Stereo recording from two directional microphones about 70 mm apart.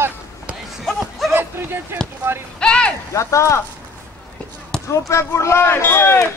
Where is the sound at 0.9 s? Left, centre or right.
Centre.